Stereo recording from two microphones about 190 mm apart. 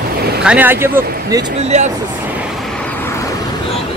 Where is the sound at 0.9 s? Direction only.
50° right (ahead or behind).